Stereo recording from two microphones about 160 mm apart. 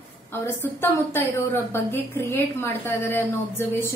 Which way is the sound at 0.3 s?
15° left (ahead or behind).